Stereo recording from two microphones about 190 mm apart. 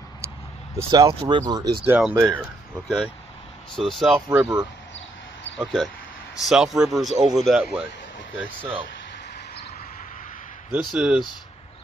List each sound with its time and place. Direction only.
0.7 s speech: 20° right (ahead or behind)
1.9 s speech: 10° right (ahead or behind)
4.3 s speech: 10° right (ahead or behind)
6.4 s speech: centre (ahead or behind)
10.7 s speech: 5° right (ahead or behind)